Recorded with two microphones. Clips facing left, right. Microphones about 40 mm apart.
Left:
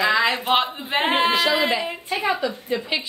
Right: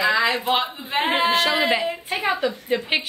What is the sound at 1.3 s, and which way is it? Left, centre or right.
A woman's voice, right.